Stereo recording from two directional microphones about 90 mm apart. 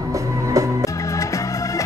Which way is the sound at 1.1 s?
35° left (ahead or behind).